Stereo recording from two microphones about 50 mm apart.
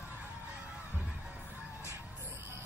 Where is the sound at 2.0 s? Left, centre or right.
Right.